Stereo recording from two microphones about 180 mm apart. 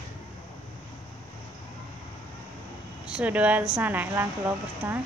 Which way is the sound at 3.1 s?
5° right (ahead or behind).